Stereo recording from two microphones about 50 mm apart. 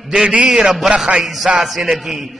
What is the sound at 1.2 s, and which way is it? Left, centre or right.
A man's voice, centre.